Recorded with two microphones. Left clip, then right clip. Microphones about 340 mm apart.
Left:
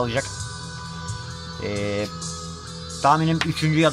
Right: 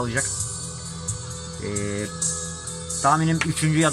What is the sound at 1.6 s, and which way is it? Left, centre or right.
Music, left.